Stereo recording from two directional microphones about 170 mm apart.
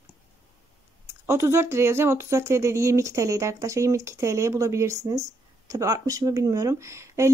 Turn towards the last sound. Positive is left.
turn(degrees=-15)  # may be behind; listen again after turning